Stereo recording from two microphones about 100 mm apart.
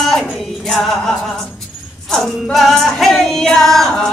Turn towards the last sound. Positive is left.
turn(degrees=5)  # may be behind; listen again after turning